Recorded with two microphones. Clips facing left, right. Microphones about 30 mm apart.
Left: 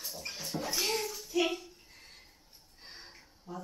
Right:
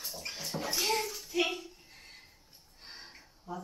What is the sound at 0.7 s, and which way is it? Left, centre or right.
Bathtub, centre.